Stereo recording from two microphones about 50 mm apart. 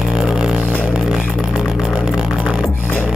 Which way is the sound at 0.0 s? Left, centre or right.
Centre.